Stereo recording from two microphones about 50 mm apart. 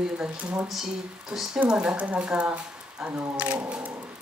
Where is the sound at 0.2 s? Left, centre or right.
Right.